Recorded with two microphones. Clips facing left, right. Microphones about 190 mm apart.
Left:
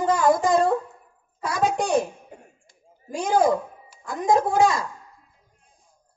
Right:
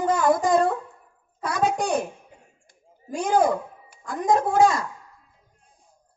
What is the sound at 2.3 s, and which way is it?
Cough, 50° left (ahead or behind).